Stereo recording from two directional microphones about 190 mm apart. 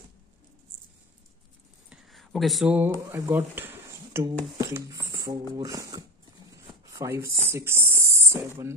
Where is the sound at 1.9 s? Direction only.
Centre (ahead or behind).